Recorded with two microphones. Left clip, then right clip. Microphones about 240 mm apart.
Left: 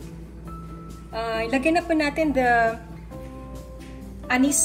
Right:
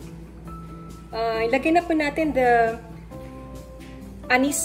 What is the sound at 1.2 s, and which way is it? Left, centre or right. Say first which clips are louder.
Speech: right 2 dB; left.